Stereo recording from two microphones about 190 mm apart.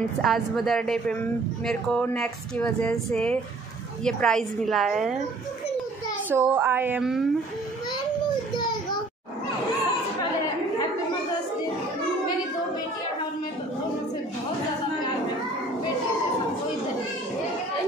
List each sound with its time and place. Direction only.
0.2 s speech: centre (ahead or behind)
6.3 s speech: 10° right (ahead or behind)